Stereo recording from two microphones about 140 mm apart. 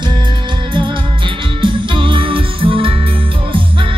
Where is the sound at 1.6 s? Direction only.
35° right (ahead or behind).